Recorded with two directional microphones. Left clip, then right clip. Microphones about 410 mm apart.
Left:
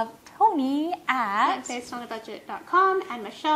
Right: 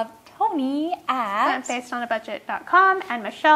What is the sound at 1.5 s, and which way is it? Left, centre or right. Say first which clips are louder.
A woman's voice: right 5 dB; right.